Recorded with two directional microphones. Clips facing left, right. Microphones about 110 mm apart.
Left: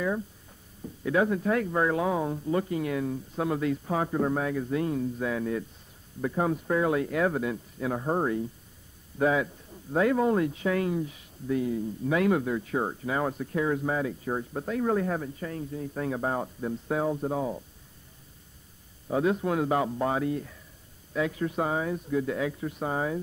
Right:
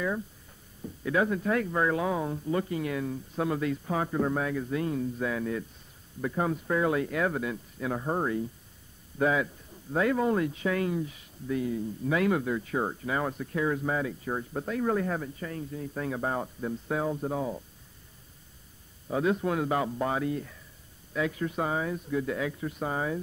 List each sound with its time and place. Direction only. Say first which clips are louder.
1.0 s speech: left 2 dB; 20° left (ahead or behind)
19.0 s speech: left 1 dB; 20° left (ahead or behind)